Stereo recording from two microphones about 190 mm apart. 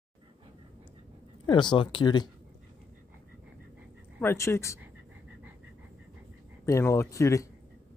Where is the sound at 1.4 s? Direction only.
25° left (ahead or behind).